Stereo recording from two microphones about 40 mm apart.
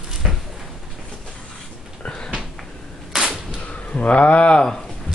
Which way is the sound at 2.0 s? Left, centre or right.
Left.